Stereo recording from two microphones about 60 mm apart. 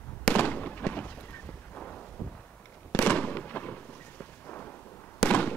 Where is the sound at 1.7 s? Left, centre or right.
Left.